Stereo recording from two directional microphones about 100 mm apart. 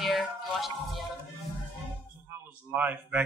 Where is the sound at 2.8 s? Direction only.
15° right (ahead or behind).